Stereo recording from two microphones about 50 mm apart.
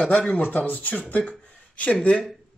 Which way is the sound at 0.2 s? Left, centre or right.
Left.